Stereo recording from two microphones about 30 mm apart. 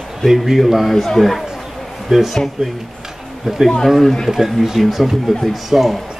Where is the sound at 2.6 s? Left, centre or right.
Centre.